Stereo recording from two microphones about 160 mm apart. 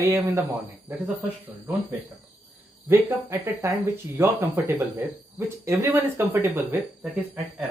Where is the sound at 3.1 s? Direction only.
15° right (ahead or behind).